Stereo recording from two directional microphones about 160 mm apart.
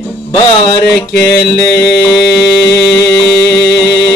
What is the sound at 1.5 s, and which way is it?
Mantra, 20° left (ahead or behind).